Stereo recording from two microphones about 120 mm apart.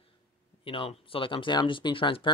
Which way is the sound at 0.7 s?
50° left (ahead or behind).